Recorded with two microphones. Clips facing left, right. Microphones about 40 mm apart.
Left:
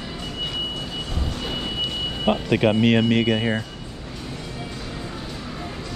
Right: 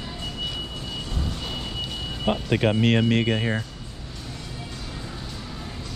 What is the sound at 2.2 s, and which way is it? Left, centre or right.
Speech, left.